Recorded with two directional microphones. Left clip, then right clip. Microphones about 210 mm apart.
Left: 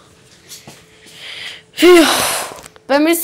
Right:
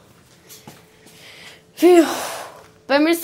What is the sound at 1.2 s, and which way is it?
Gasp, 5° right (ahead or behind).